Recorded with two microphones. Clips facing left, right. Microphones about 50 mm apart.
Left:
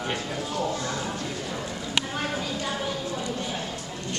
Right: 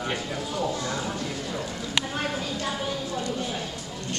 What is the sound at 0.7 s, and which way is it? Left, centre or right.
Speech, centre.